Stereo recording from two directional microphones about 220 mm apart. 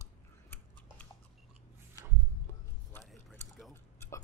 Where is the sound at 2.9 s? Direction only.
5° left (ahead or behind).